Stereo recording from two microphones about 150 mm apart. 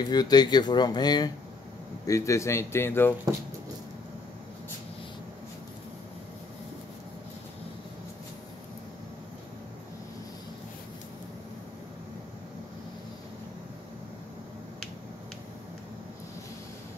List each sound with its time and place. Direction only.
0.1 s a man's voice: 25° left (ahead or behind)